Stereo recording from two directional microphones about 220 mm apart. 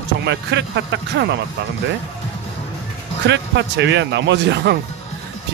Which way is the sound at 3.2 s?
55° right (ahead or behind).